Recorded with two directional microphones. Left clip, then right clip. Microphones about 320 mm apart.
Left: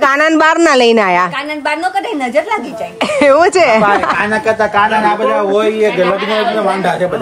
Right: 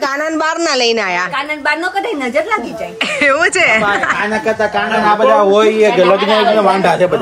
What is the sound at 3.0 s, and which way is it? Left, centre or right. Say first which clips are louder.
A woman's voice: left 4 dB; centre.